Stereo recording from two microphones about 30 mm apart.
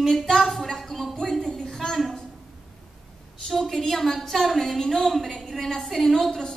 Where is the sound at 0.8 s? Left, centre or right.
Centre.